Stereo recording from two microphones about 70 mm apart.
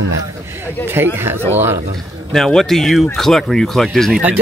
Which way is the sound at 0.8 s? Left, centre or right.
Right.